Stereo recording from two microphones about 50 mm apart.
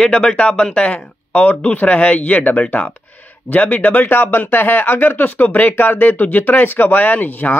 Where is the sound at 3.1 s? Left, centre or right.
Left.